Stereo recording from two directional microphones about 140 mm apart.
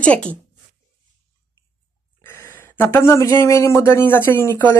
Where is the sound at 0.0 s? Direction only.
10° left (ahead or behind).